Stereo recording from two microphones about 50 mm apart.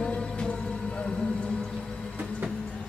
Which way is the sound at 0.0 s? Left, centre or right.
Left.